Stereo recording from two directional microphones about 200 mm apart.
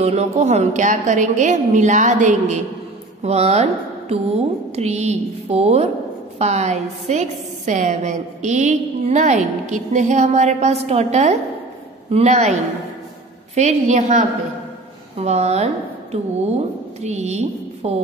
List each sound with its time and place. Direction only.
0.0 s a woman's voice: 35° right (ahead or behind)
13.6 s a woman's voice: 35° right (ahead or behind)